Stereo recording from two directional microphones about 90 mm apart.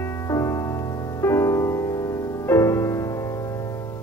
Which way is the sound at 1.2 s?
30° left (ahead or behind).